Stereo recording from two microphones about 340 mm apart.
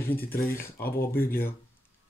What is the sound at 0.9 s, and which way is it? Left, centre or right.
Speech, left.